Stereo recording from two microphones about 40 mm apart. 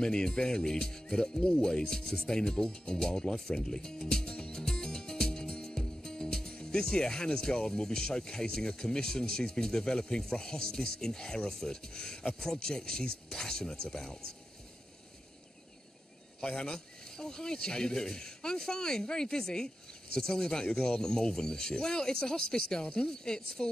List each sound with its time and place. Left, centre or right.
0.0 s speech: centre
2.9 s music: centre
6.5 s speech: centre
16.3 s speech: left